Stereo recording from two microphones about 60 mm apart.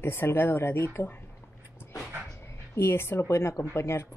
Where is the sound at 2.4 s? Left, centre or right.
Left.